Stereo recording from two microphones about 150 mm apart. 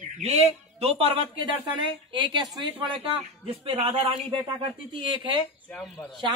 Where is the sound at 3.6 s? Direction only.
40° right (ahead or behind).